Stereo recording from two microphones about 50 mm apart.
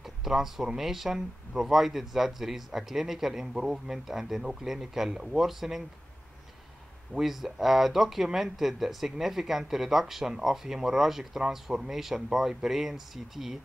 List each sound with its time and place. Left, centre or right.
0.0 s a sound: centre
0.7 s speech: centre
7.2 s speech: centre